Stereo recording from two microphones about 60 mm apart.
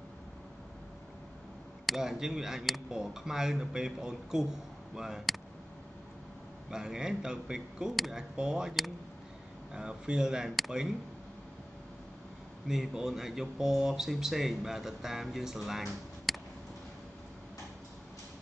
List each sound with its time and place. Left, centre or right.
1.9 s speech: centre
6.7 s speech: centre
9.8 s speech: centre
12.6 s speech: centre